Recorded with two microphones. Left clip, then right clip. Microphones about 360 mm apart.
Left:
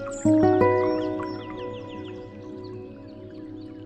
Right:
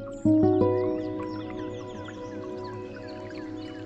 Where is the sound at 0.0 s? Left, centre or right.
Left.